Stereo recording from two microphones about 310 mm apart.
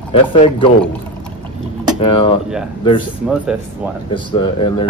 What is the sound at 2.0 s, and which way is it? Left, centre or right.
Speech, centre.